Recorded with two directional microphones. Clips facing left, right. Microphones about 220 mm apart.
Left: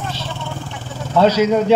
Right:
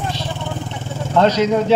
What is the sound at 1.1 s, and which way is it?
Speech, 10° left (ahead or behind).